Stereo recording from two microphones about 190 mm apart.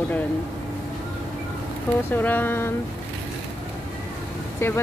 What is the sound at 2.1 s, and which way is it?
Speech, 10° left (ahead or behind).